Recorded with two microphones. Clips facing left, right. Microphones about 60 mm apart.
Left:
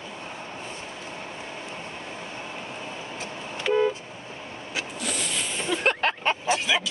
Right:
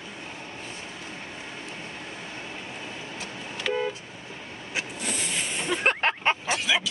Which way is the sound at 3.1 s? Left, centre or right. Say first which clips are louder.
Left 2 dB; left.